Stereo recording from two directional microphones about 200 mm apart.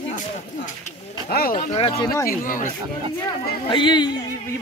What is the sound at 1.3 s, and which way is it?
Speech, 50° left (ahead or behind).